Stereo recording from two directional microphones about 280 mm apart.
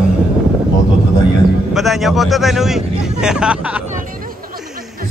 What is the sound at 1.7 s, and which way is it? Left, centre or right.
A man's voice, centre.